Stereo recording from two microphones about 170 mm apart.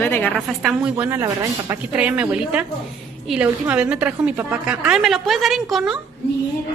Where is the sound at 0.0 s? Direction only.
10° left (ahead or behind).